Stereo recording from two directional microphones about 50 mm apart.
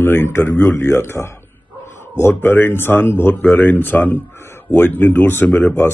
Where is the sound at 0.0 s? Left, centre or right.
Left.